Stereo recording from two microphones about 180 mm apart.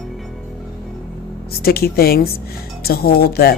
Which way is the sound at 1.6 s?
60° left (ahead or behind).